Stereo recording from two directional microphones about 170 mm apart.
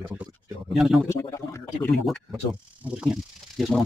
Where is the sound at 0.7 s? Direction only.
Centre (ahead or behind).